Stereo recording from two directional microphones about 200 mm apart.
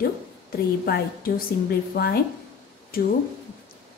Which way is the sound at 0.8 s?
50° left (ahead or behind).